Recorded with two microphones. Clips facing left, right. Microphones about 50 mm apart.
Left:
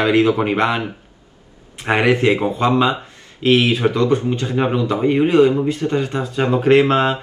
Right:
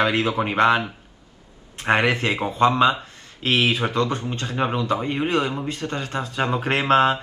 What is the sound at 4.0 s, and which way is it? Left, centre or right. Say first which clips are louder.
Speech: left 7 dB; left.